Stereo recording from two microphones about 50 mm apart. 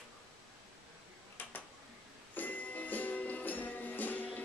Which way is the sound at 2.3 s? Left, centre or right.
Left.